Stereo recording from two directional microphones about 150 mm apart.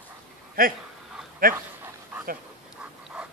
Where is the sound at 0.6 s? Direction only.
75° right (ahead or behind).